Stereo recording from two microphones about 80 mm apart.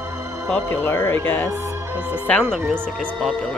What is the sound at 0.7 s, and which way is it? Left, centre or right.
Music, left.